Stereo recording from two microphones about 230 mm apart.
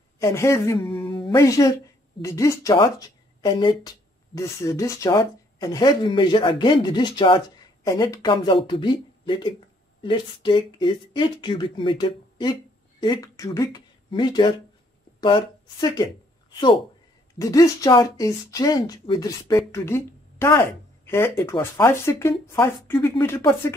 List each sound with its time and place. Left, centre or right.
0.2 s speech: centre